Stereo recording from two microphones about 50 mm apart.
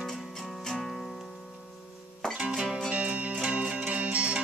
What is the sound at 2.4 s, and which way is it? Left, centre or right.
Music, centre.